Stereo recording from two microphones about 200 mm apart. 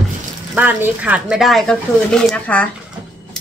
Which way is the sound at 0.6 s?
10° right (ahead or behind).